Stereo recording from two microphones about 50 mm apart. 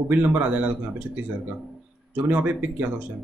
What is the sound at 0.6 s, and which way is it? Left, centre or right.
Speech, right.